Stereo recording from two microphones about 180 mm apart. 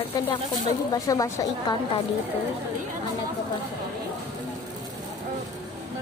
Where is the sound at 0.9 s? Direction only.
20° left (ahead or behind).